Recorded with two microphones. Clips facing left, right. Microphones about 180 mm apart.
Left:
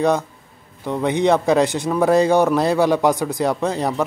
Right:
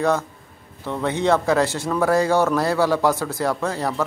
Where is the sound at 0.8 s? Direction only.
15° left (ahead or behind).